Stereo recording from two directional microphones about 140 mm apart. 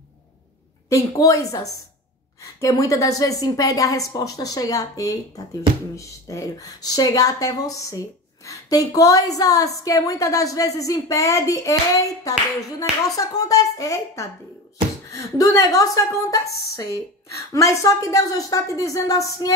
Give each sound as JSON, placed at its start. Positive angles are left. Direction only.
{"t": 0.8, "sound": "a woman's voice", "side_deg": 20}